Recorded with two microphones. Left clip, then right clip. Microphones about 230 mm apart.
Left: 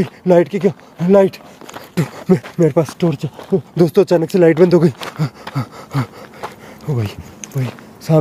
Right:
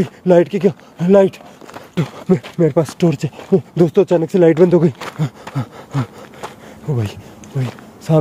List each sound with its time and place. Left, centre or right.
0.0 s speech: centre
1.7 s speech: centre
3.0 s speech: centre
3.7 s speech: centre
4.9 s speech: centre
5.4 s a sound: centre